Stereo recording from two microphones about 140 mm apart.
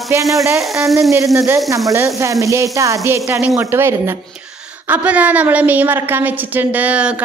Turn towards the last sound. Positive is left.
turn(degrees=-10)  # may be behind; listen again after turning